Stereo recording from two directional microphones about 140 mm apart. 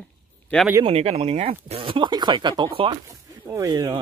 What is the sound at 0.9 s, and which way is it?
Speech, 45° right (ahead or behind).